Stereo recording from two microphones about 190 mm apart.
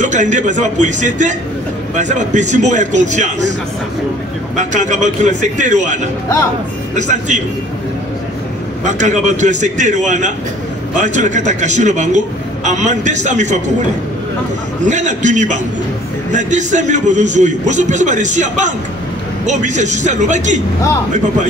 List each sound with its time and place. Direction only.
0.0 s a man's voice: 40° right (ahead or behind)
4.6 s a man's voice: 40° right (ahead or behind)
7.0 s a man's voice: 40° right (ahead or behind)
8.8 s a man's voice: 40° right (ahead or behind)
14.9 s a man's voice: 40° right (ahead or behind)